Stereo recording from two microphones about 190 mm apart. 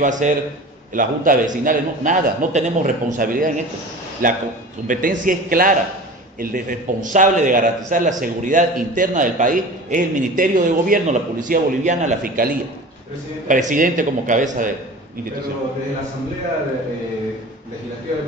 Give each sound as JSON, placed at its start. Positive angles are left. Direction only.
{"t": 0.0, "sound": "a man's voice", "side_deg": -40}